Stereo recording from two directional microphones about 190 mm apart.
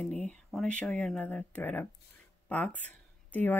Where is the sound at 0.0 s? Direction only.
5° left (ahead or behind).